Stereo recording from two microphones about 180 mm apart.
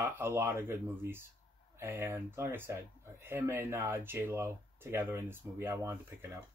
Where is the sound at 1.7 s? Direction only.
10° right (ahead or behind).